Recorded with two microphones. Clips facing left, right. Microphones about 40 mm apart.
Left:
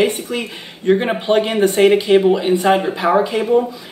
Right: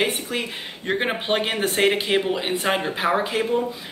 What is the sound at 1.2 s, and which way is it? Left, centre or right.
Speech, right.